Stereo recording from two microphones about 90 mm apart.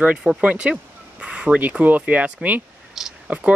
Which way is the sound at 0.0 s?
15° right (ahead or behind).